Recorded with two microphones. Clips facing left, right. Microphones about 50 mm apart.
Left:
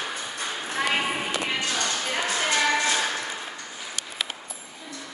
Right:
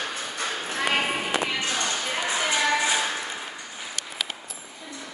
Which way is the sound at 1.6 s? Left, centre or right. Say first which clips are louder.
Even; right.